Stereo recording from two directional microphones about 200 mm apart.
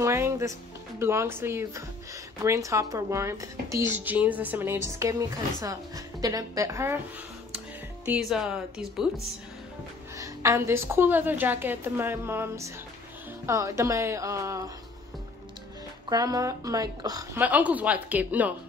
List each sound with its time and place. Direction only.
0.0 s music: 15° right (ahead or behind)
0.9 s a woman's voice: 10° right (ahead or behind)
10.1 s a woman's voice: 15° right (ahead or behind)
16.1 s a woman's voice: 20° right (ahead or behind)
17.4 s a woman's voice: 10° right (ahead or behind)